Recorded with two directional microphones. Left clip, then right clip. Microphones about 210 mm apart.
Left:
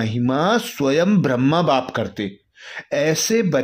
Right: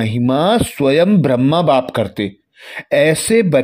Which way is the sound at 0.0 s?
20° right (ahead or behind).